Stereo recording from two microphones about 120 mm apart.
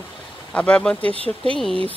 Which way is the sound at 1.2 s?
50° right (ahead or behind).